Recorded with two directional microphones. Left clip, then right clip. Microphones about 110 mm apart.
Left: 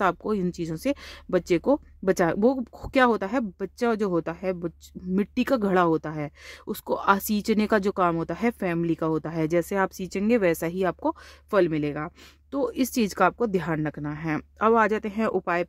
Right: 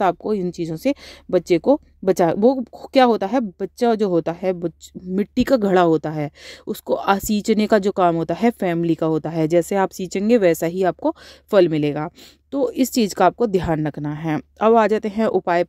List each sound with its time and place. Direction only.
0.0 s speech: 30° right (ahead or behind); by 6.3 s 45° right (ahead or behind)
6.6 s speech: 30° right (ahead or behind)
11.6 s speech: 55° right (ahead or behind)
12.4 s speech: 35° right (ahead or behind)